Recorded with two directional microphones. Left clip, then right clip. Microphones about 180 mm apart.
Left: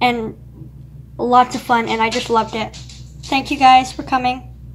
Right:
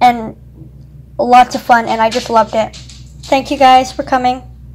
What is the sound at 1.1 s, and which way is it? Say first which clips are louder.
A woman's voice: right 6 dB; 20° right (ahead or behind).